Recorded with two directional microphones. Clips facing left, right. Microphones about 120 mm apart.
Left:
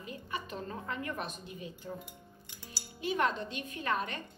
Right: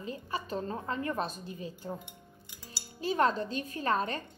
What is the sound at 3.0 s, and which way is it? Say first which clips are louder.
A woman's voice: right 4 dB; 35° right (ahead or behind).